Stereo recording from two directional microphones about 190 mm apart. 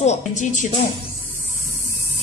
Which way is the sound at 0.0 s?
40° left (ahead or behind).